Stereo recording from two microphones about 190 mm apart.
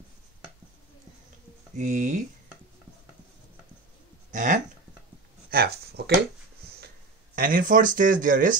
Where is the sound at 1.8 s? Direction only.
40° right (ahead or behind).